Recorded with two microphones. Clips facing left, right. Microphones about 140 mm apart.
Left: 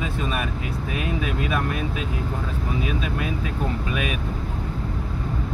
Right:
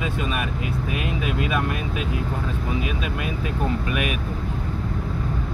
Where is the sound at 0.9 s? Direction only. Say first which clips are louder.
Left 1 dB; 35° left (ahead or behind).